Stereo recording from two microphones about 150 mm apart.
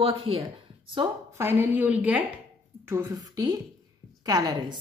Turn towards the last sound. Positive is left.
turn(degrees=-25)  # may be behind; listen again after turning